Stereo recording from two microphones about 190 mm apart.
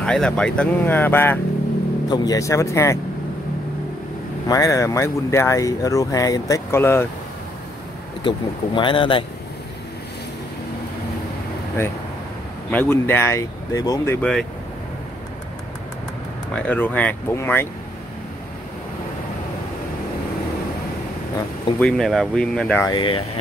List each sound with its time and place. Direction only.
0.0 s speech: 5° left (ahead or behind)
4.5 s speech: 20° left (ahead or behind)
8.2 s speech: 25° left (ahead or behind)
12.7 s speech: 10° left (ahead or behind)
16.5 s speech: 10° left (ahead or behind)
21.7 s speech: 5° left (ahead or behind)
22.8 s speech: 25° left (ahead or behind)